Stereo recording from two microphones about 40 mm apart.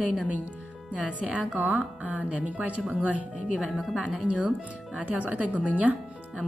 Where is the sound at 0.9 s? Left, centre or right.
Right.